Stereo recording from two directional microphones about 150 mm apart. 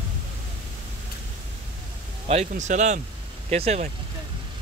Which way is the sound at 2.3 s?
50° right (ahead or behind).